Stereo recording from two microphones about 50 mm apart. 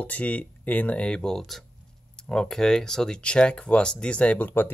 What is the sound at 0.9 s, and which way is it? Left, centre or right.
Speech, centre.